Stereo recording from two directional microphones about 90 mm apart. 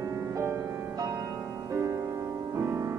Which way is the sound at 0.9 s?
40° right (ahead or behind).